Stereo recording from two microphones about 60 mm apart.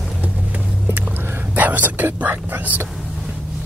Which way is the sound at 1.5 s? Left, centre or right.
Right.